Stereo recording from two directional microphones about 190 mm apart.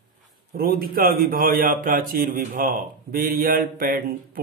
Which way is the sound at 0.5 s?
50° right (ahead or behind).